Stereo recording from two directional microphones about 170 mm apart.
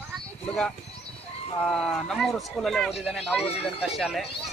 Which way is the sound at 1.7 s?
Centre (ahead or behind).